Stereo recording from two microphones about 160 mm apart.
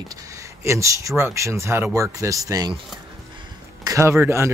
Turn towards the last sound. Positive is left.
turn(degrees=-15)  # may be behind; listen again after turning